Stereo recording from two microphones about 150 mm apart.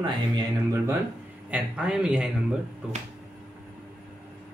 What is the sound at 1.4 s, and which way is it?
Speech, 10° right (ahead or behind).